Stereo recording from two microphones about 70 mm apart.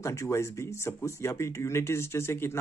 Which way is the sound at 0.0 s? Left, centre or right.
Left.